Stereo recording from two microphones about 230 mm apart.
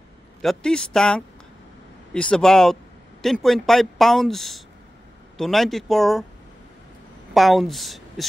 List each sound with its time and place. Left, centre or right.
0.4 s a man's voice: centre
7.3 s speech: centre